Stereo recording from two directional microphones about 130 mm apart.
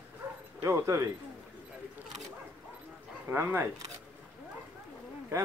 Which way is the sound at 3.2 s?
20° right (ahead or behind).